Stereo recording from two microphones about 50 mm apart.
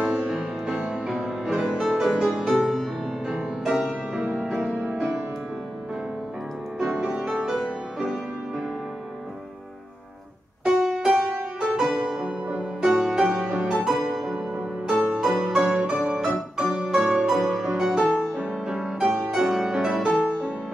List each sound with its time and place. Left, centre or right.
0.3 s music: centre
4.5 s music: centre
7.0 s music: right
7.2 s music: centre
10.6 s music: centre
19.8 s music: centre